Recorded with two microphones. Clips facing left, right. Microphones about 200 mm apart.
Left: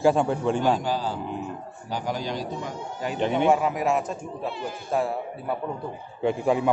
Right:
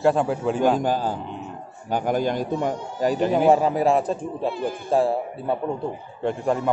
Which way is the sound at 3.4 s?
35° right (ahead or behind).